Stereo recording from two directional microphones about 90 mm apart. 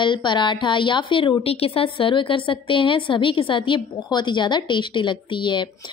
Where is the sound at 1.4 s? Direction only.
90° left.